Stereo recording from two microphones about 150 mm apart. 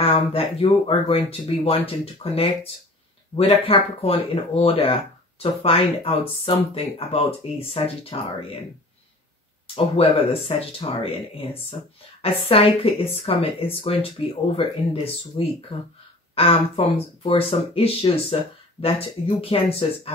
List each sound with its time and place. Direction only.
0.0 s speech: 35° left (ahead or behind)
9.8 s speech: 35° left (ahead or behind)
15.3 s speech: 40° left (ahead or behind)